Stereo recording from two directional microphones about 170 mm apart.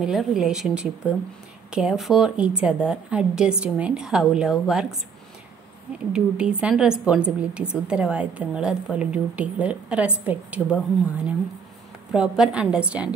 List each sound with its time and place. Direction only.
0.0 s a woman's voice: centre (ahead or behind)
6.1 s a woman's voice: 5° right (ahead or behind)
12.1 s a woman's voice: 5° right (ahead or behind)